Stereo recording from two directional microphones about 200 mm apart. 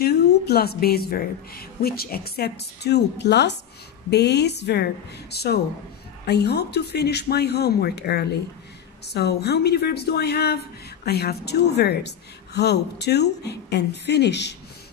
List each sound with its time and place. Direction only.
0.0 s a woman's voice: 50° left (ahead or behind)